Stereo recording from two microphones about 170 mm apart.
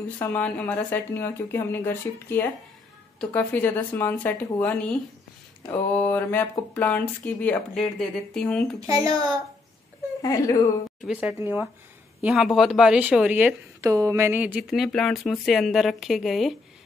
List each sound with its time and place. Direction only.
0.2 s speech: 10° left (ahead or behind)
8.8 s a child's voice: 20° right (ahead or behind)
10.2 s speech: 20° left (ahead or behind)
11.1 s speech: 10° right (ahead or behind)
13.7 s speech: 20° right (ahead or behind); by 16.5 s centre (ahead or behind)